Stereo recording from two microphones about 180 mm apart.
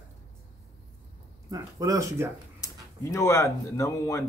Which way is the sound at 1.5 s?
20° right (ahead or behind).